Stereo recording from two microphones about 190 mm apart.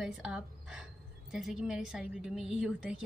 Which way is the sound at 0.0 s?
5° right (ahead or behind).